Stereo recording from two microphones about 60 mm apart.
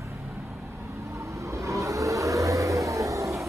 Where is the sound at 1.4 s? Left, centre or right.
Right.